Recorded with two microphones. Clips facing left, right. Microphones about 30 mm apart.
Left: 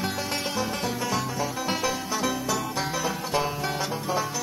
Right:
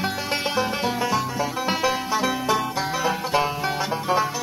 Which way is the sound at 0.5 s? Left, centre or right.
Right.